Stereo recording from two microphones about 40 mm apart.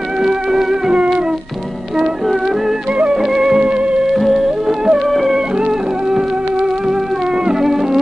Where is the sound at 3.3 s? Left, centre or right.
Centre.